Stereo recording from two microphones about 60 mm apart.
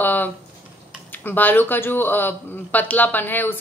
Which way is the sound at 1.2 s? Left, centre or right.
Left.